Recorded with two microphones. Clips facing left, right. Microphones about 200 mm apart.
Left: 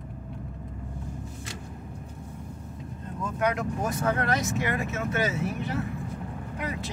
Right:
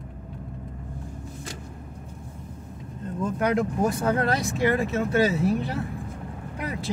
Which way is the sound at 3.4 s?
30° right (ahead or behind).